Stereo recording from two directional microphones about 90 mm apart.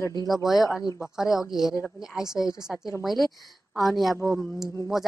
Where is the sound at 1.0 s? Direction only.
5° right (ahead or behind).